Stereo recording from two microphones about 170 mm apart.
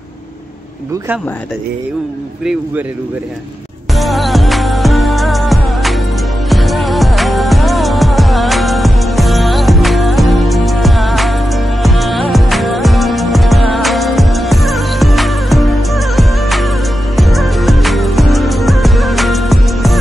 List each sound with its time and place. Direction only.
3.9 s music: centre (ahead or behind)